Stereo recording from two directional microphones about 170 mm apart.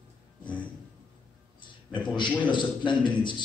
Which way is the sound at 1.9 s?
25° left (ahead or behind).